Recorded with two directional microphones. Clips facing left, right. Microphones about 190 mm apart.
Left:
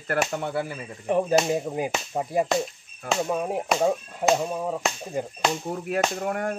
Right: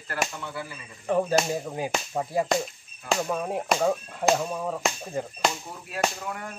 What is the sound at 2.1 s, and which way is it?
Speech, 20° left (ahead or behind).